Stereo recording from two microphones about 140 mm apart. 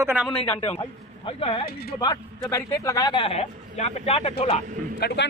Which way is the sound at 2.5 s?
20° left (ahead or behind).